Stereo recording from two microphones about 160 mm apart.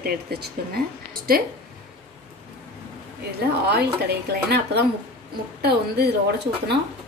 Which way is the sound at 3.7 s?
90° right.